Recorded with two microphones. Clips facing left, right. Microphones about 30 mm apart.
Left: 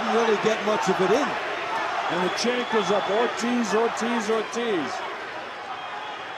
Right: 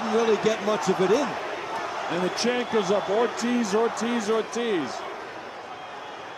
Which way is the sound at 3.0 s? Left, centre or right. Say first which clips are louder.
Left 1 dB; left.